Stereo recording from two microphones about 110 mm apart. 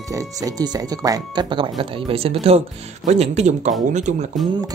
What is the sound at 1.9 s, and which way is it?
Speech, 60° right (ahead or behind).